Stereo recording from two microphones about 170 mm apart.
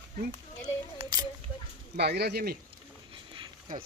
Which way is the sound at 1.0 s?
35° right (ahead or behind).